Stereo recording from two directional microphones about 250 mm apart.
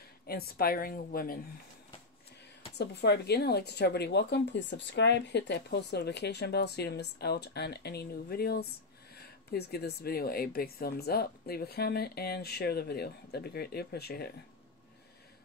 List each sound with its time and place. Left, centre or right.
0.3 s speech: left
2.8 s speech: left